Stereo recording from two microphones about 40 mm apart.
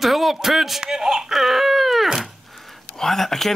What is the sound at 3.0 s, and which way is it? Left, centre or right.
Speech, centre.